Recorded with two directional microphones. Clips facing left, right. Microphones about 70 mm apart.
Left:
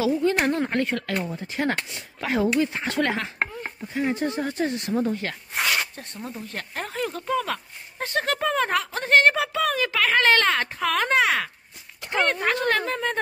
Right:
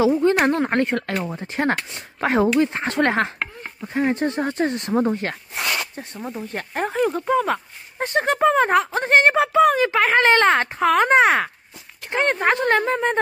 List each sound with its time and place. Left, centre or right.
0.0 s speech: right
5.9 s speech: centre